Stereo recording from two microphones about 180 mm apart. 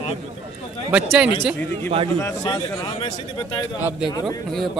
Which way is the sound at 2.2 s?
15° left (ahead or behind).